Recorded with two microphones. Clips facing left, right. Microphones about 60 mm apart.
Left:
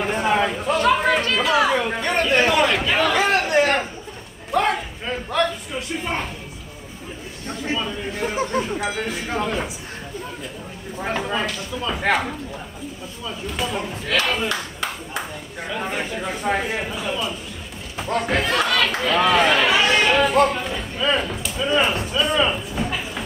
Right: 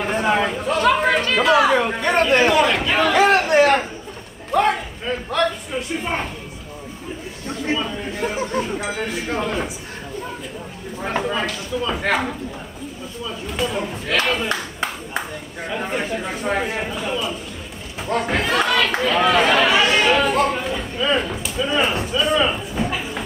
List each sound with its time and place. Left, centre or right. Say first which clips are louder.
0.0 s a man's voice: right 1 dB; centre
1.3 s speech: right 4 dB; right
1.7 s a man's voice: right 3 dB; centre
7.7 s speech: right 1 dB; centre
11.1 s speech: right 2 dB; centre
13.5 s speech: right 2 dB; centre